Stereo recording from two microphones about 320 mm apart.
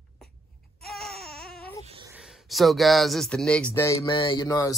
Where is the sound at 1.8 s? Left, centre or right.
Centre.